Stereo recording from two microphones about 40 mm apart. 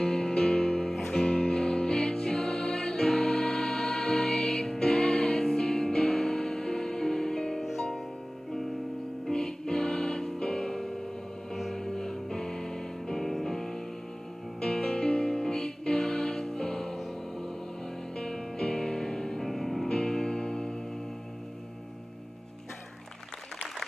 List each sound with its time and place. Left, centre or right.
0.0 s music: centre
0.9 s music: centre
1.4 s music: left; by 8.0 s centre
9.3 s music: centre
19.9 s music: centre